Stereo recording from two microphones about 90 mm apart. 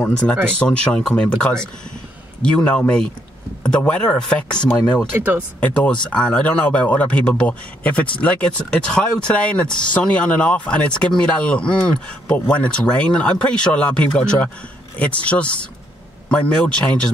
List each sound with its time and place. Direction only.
0.6 s speech: 10° left (ahead or behind)
4.9 s speech: 20° right (ahead or behind)
5.6 s speech: 10° left (ahead or behind)